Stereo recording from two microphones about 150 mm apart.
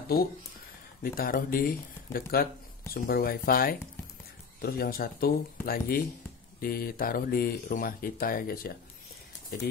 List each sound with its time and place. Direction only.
1.0 s speech: 70° left (ahead or behind)
2.3 s speech: 90° left; by 8.7 s 75° left (ahead or behind)